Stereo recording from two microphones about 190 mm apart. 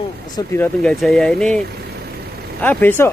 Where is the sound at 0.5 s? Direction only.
10° left (ahead or behind).